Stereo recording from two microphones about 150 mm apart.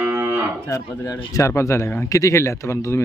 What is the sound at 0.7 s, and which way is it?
Speech, 20° left (ahead or behind).